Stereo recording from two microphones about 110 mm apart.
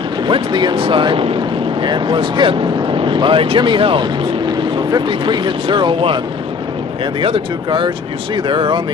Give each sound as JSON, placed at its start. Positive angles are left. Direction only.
{"t": 0.3, "sound": "speech", "side_deg": -45}
{"t": 7.2, "sound": "speech", "side_deg": -50}